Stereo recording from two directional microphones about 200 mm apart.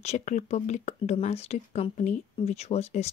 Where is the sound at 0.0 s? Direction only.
35° left (ahead or behind).